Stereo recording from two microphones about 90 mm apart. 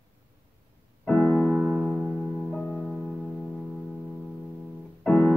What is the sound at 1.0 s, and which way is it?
Music, 10° left (ahead or behind).